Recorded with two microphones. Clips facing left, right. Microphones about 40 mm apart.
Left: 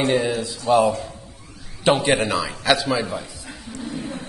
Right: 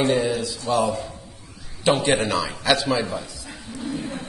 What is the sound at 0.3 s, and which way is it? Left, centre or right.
Speech, left.